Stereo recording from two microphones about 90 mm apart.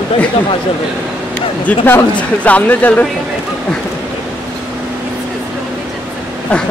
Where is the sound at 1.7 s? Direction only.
20° left (ahead or behind).